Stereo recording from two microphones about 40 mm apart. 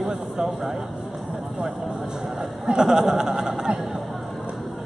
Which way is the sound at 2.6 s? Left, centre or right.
Centre.